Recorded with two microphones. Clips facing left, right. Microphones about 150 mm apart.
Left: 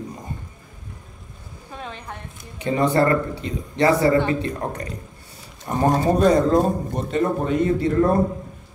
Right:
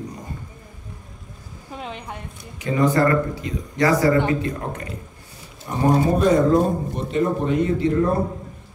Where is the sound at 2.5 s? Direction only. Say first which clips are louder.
Even; 30° left (ahead or behind).